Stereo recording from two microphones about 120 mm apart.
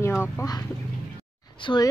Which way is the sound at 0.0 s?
20° left (ahead or behind).